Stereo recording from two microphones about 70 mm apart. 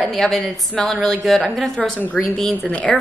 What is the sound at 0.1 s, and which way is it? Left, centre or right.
Speech, centre.